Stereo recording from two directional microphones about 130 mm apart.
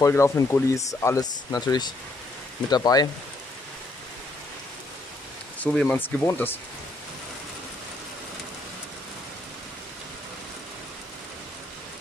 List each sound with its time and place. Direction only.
0.0 s speech: 25° left (ahead or behind)
5.6 s speech: 5° left (ahead or behind)